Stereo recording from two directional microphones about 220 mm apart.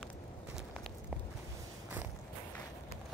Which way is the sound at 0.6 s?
Centre (ahead or behind).